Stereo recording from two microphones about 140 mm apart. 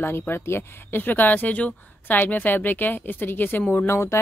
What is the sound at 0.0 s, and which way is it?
Speech, 15° left (ahead or behind).